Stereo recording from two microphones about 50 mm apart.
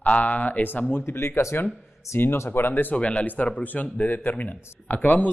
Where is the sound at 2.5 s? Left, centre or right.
Left.